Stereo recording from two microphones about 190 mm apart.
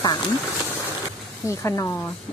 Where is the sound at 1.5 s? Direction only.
15° left (ahead or behind).